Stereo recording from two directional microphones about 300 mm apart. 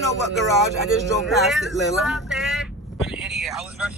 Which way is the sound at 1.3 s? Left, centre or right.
Centre.